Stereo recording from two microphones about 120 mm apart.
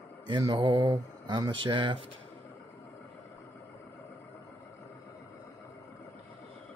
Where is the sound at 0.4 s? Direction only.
40° right (ahead or behind).